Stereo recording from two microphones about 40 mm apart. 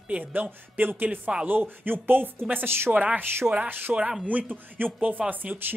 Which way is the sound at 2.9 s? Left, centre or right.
Right.